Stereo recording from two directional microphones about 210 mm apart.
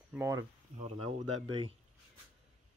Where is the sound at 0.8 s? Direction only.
30° right (ahead or behind).